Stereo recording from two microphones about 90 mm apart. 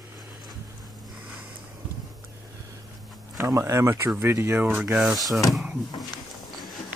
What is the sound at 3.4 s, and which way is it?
Speech, 35° right (ahead or behind).